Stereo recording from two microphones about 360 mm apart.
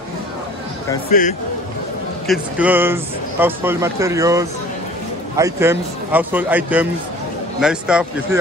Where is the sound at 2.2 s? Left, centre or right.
Centre.